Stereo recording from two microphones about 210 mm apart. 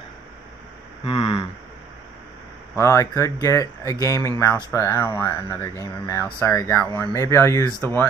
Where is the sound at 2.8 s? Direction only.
15° left (ahead or behind).